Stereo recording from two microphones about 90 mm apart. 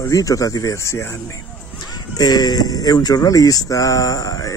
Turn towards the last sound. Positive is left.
turn(degrees=40)  # may be behind; listen again after turning